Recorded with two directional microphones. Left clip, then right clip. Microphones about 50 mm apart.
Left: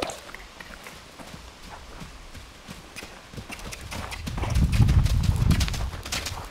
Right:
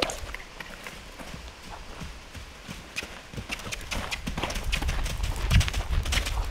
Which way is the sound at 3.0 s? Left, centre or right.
Right.